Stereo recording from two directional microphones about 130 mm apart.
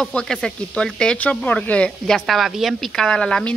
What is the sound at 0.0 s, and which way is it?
Speech, 5° left (ahead or behind).